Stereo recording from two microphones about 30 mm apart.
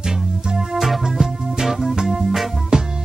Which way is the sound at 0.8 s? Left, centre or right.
Centre.